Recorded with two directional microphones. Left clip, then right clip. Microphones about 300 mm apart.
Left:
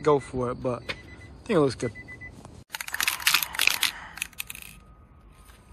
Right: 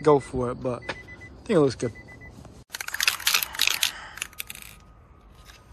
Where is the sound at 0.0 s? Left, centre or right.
Centre.